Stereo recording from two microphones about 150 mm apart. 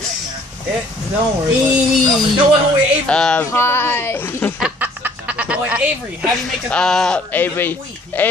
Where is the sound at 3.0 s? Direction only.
5° left (ahead or behind).